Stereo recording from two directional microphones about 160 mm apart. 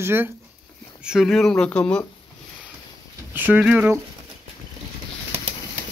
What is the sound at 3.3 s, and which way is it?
Speech, 10° right (ahead or behind).